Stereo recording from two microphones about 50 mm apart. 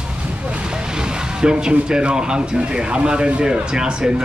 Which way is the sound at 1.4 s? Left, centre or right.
Centre.